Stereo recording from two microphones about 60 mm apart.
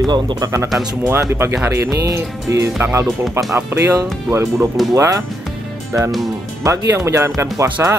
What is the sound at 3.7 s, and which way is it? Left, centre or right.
Speech, right.